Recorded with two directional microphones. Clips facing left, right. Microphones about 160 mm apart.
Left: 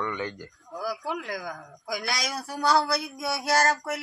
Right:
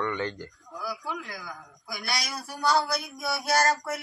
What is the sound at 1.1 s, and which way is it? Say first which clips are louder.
A man's voice: left 4 dB; 65° left (ahead or behind).